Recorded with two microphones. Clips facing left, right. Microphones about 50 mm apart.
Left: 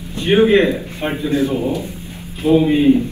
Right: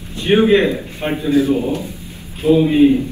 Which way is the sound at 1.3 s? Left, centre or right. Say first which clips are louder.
Right 4 dB; left.